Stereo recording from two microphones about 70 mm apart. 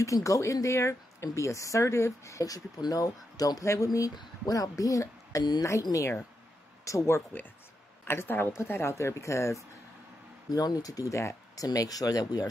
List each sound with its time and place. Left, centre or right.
0.0 s speech: left
4.1 s a woman's voice: left
10.5 s speech: left
11.6 s speech: left